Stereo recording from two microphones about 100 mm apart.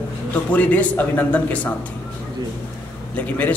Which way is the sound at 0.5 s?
15° left (ahead or behind).